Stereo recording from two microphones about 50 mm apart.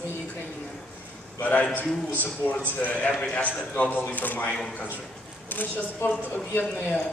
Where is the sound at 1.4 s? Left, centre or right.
Left.